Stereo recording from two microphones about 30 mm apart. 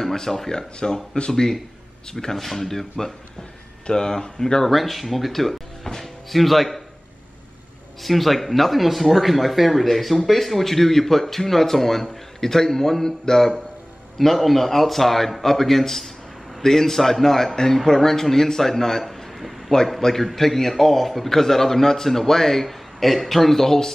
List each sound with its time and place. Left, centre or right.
0.0 s speech: centre
2.1 s speech: centre
3.8 s speech: left
4.6 s a man's voice: centre
8.0 s speech: centre
14.1 s speech: centre
20.2 s a man's voice: centre